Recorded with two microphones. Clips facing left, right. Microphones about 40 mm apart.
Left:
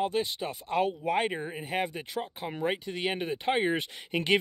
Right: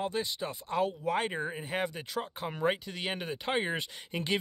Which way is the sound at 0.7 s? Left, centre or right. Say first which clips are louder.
Left 3 dB; left.